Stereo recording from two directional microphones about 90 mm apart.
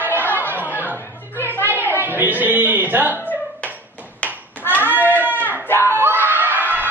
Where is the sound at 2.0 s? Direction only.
20° right (ahead or behind).